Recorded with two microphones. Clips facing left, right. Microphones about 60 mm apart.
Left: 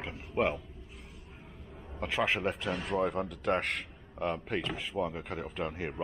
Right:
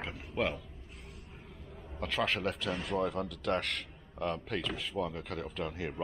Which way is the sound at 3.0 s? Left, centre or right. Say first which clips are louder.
Left 2 dB; left.